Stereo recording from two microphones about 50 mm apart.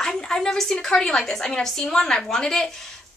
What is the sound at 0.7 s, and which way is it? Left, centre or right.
A woman's voice, centre.